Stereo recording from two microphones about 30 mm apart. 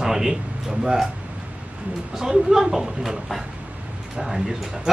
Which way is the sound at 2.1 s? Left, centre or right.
Centre.